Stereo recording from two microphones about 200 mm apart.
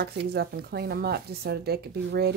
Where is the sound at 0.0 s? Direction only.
55° right (ahead or behind).